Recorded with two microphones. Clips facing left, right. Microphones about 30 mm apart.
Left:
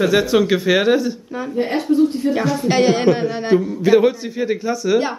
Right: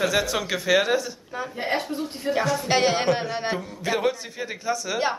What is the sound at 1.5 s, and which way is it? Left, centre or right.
Speech, centre.